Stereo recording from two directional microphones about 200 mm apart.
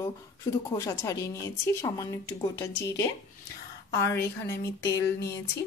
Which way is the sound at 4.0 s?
15° left (ahead or behind).